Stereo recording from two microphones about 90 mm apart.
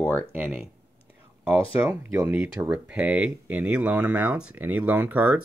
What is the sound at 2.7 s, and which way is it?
Speech, 15° right (ahead or behind).